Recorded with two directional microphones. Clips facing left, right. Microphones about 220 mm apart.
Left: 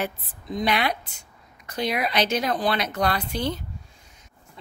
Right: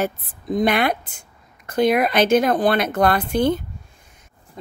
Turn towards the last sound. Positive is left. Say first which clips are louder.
# right 8 dB
turn(degrees=-50)  # may be behind; listen again after turning